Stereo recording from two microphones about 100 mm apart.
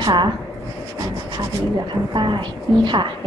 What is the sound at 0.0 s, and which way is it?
Speech, 50° right (ahead or behind).